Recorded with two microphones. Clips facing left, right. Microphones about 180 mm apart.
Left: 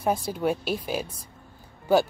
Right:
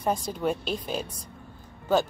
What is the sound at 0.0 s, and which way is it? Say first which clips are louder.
Speech: left 2 dB; 5° left (ahead or behind).